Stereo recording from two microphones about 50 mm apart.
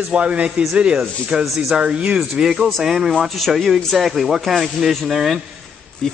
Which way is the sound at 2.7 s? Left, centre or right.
Centre.